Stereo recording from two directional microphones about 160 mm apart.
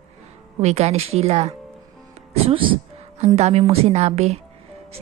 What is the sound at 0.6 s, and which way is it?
Speech, 45° right (ahead or behind).